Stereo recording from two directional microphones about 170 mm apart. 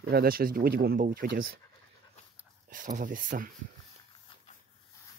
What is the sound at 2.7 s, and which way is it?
Speech, 50° right (ahead or behind).